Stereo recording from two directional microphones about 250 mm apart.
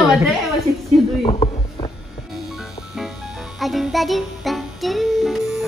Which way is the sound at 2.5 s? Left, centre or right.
Centre.